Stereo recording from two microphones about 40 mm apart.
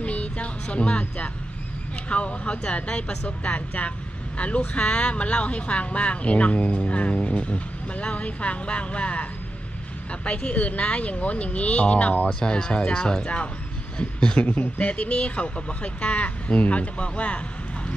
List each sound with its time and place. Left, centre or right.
0.0 s music: left
2.0 s speech: left
12.3 s speech: left
14.4 s speech: left